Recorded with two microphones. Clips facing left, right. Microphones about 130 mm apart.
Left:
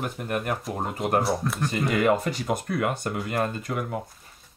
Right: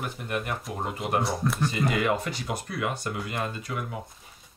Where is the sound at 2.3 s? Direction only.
50° left (ahead or behind).